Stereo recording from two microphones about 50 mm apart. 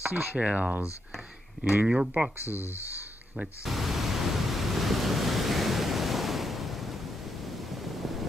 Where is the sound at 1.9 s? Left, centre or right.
Right.